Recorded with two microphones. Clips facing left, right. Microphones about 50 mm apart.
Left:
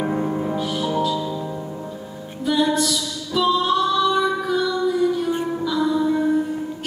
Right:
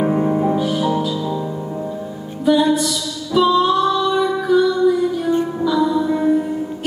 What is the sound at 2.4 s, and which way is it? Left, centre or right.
Music, centre.